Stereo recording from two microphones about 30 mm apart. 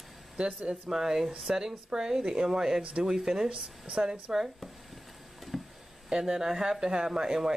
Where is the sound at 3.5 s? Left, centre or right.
Right.